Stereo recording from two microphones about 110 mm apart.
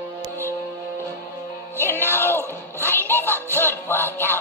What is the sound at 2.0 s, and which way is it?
Music, 20° left (ahead or behind).